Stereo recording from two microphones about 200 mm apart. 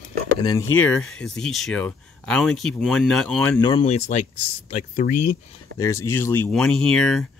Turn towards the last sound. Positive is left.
turn(degrees=5)  # may be behind; listen again after turning